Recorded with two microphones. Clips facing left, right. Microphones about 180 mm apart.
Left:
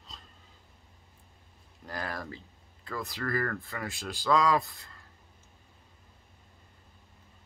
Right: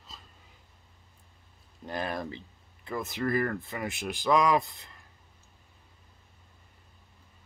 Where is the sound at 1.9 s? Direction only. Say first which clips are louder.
Right 4 dB; 20° right (ahead or behind).